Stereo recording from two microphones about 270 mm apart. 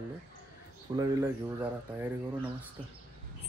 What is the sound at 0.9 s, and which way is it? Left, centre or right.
Speech, centre.